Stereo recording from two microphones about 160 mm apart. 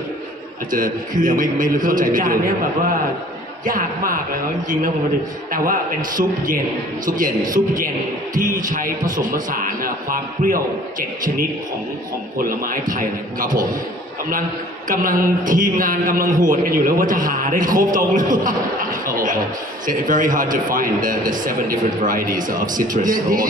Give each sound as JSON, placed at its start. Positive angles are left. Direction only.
{"t": 0.7, "sound": "a man's voice", "side_deg": -55}
{"t": 3.6, "sound": "a man's voice", "side_deg": -60}
{"t": 5.5, "sound": "a man's voice", "side_deg": -60}
{"t": 12.4, "sound": "a man's voice", "side_deg": -65}
{"t": 14.9, "sound": "a man's voice", "side_deg": -60}